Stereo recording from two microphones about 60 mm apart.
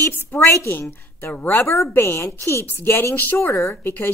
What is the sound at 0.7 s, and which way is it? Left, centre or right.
Speech, left.